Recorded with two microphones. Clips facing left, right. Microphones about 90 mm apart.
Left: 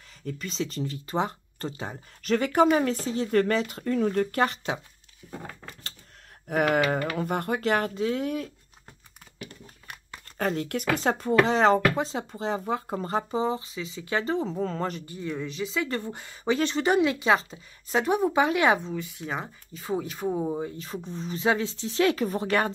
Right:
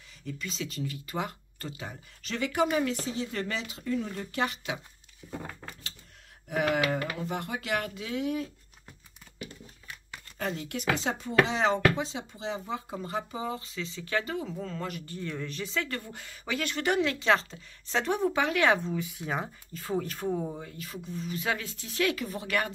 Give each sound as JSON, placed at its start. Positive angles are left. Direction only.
{"t": 0.2, "sound": "speech", "side_deg": 45}
{"t": 2.2, "sound": "speech", "side_deg": 45}
{"t": 6.4, "sound": "speech", "side_deg": 50}
{"t": 10.3, "sound": "speech", "side_deg": 55}
{"t": 13.3, "sound": "speech", "side_deg": 25}
{"t": 13.6, "sound": "speech", "side_deg": 15}
{"t": 14.2, "sound": "speech", "side_deg": 30}
{"t": 15.1, "sound": "speech", "side_deg": 10}
{"t": 15.9, "sound": "speech", "side_deg": 25}
{"t": 18.9, "sound": "speech", "side_deg": -5}
{"t": 20.3, "sound": "speech", "side_deg": 25}